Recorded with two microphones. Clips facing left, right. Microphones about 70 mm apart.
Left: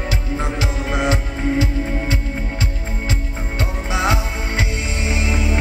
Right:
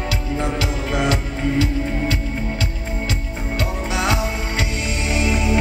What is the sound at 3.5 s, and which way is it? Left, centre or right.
Music, left.